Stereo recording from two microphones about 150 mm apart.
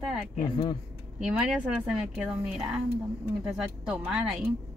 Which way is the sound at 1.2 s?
5° right (ahead or behind).